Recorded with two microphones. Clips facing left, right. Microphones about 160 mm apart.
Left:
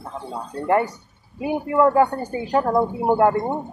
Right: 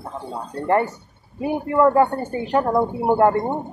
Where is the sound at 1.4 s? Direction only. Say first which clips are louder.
Right 1 dB; 15° left (ahead or behind).